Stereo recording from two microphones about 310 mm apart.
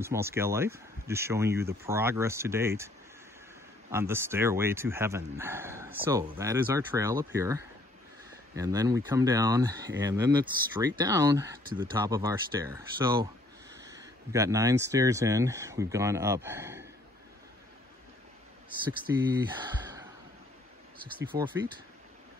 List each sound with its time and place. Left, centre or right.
0.0 s speech: centre
3.9 s speech: centre
19.1 s speech: centre
19.7 s sigh: centre
21.2 s speech: centre